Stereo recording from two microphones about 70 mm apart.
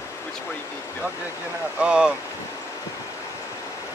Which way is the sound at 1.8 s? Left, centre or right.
Centre.